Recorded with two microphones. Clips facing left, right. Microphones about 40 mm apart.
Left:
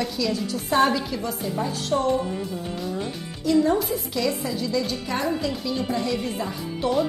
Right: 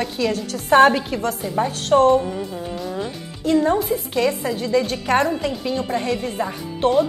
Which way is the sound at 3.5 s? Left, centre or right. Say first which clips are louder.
Right 3 dB; right.